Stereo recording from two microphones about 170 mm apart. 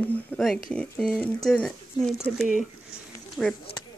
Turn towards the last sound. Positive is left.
turn(degrees=-5)  # may be behind; listen again after turning